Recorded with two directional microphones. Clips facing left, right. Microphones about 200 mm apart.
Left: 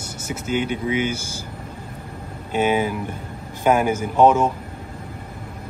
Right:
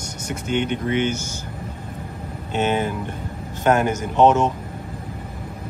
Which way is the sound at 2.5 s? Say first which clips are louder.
Left 2 dB; 10° left (ahead or behind).